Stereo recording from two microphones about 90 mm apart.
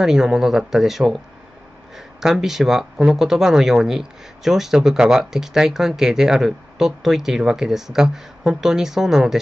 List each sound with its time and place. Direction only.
0.0 s speech: 5° right (ahead or behind)
2.1 s speech: 5° right (ahead or behind)